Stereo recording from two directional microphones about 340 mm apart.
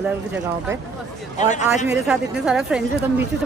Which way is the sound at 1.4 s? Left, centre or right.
Left.